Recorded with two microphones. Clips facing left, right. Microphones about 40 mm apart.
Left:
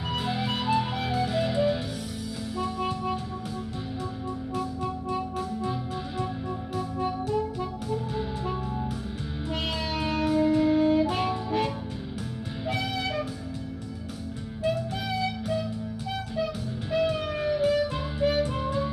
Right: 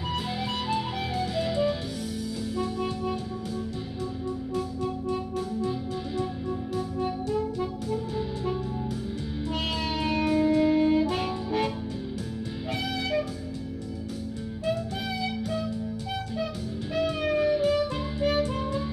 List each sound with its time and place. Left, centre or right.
0.1 s music: centre
5.6 s music: centre
9.5 s music: centre
16.9 s music: centre